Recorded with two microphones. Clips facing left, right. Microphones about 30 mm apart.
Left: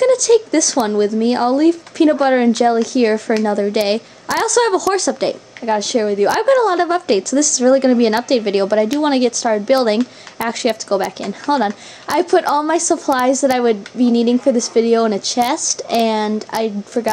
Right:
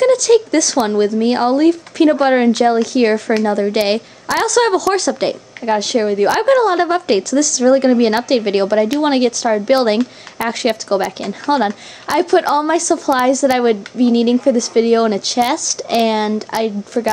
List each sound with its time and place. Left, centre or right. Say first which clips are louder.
0.0 s a woman's voice: right 1 dB; right